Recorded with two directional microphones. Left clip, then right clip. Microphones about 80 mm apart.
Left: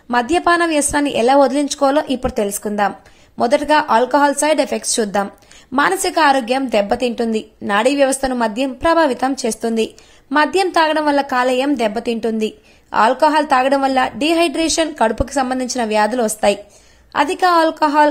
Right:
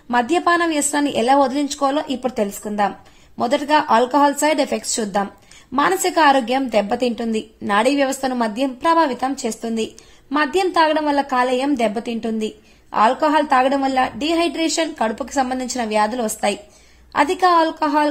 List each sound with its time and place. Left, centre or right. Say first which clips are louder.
0.1 s a woman's voice: left 2 dB; centre
2.1 s a woman's voice: left 3 dB; left
3.3 s a woman's voice: left 3 dB; left
10.3 s a woman's voice: left 3 dB; left
13.7 s a woman's voice: left 3 dB; left
14.0 s a woman's voice: left 4 dB; left